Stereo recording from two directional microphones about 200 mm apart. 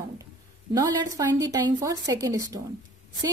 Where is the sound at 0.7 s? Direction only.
15° right (ahead or behind).